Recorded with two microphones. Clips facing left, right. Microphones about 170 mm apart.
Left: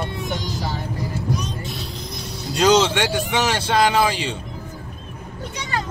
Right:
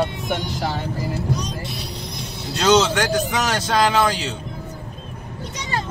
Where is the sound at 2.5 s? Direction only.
Centre (ahead or behind).